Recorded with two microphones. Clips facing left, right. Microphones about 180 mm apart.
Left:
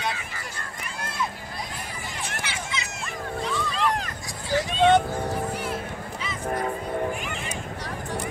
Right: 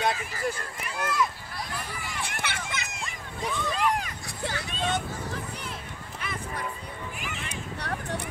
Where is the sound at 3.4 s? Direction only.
10° right (ahead or behind).